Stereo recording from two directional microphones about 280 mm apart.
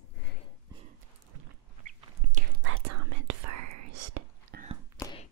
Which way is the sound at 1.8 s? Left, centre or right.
Right.